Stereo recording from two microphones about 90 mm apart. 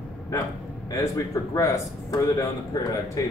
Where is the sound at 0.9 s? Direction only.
40° left (ahead or behind).